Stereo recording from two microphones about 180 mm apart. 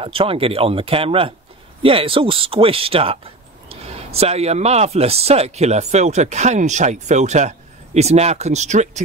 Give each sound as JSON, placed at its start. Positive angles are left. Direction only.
{"t": 0.0, "sound": "speech", "side_deg": -30}